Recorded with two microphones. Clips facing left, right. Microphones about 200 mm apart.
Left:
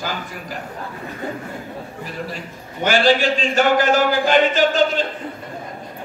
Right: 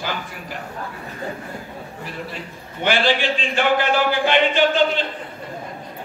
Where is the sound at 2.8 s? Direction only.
40° left (ahead or behind).